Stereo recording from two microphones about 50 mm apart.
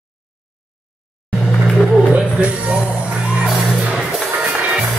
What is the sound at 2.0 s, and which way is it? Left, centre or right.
Music, right.